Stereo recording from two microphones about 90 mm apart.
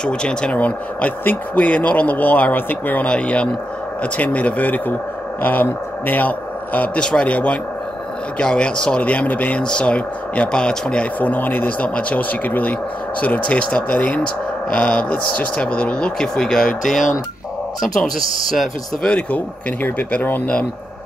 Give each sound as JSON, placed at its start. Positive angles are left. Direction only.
{"t": 0.0, "sound": "speech", "side_deg": 10}
{"t": 19.0, "sound": "speech", "side_deg": 15}